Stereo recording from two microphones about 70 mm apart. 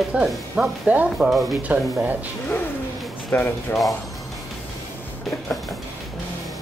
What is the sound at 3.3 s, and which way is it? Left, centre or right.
Speech, left.